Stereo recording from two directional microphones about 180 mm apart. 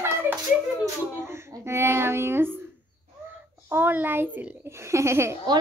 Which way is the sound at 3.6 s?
10° right (ahead or behind).